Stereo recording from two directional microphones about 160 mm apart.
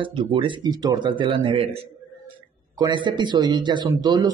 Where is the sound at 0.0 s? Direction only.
30° right (ahead or behind).